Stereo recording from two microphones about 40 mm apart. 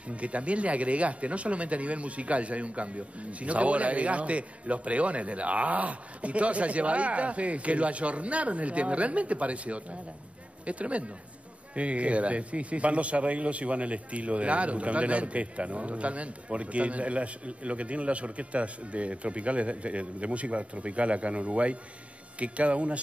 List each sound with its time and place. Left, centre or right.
0.1 s speech: right